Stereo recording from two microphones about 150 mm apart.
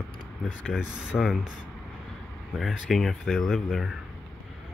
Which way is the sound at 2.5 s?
Centre (ahead or behind).